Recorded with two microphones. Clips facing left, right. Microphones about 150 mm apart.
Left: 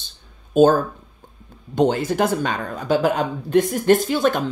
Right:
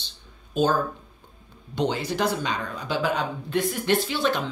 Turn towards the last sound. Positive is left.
turn(degrees=45)  # may be behind; listen again after turning